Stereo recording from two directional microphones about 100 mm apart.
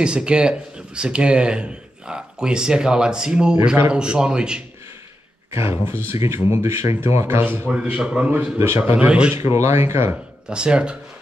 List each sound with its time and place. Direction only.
0.0 s speech: 10° right (ahead or behind)
5.5 s speech: 30° right (ahead or behind); by 8.3 s 10° right (ahead or behind)
8.5 s speech: 25° right (ahead or behind)
9.6 s speech: 30° right (ahead or behind)
10.5 s speech: 10° right (ahead or behind)